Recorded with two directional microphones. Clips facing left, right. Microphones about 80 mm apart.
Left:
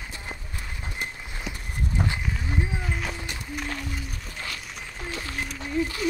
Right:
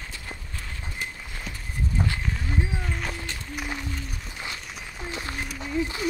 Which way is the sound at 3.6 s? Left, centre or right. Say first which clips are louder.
Even; centre.